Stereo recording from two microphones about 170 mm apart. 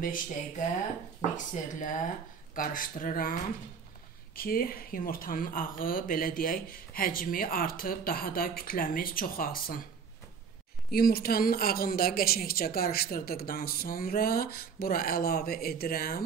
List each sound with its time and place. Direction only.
0.0 s speech: 55° left (ahead or behind)
4.4 s speech: 60° left (ahead or behind)
10.9 s speech: 60° left (ahead or behind)